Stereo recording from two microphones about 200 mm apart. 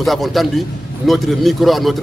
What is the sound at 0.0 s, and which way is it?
Speech, centre (ahead or behind).